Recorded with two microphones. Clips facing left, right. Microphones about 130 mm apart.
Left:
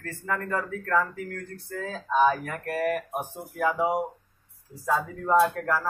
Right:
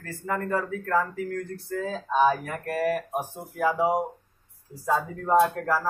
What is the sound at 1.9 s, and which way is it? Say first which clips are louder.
Speech: even; centre (ahead or behind).